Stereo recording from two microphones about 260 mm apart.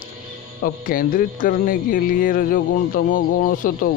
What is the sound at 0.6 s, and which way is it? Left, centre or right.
Speech, left.